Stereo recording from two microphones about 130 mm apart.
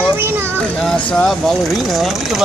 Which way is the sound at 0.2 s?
15° right (ahead or behind).